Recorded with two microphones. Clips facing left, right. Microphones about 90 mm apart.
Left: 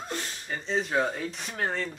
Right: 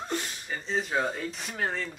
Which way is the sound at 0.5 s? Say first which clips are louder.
Left 2 dB; centre (ahead or behind).